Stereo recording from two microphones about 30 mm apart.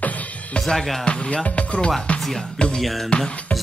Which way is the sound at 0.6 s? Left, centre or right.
Centre.